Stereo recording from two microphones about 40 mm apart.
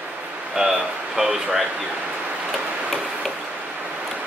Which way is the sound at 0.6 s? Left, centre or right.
Centre.